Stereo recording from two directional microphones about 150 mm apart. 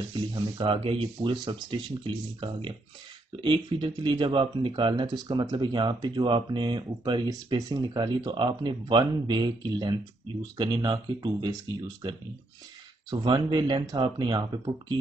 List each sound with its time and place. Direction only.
0.3 s speech: 35° right (ahead or behind)
13.1 s speech: 30° right (ahead or behind)